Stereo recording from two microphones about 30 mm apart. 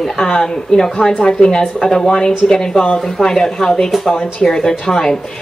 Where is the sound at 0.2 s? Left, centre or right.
Left.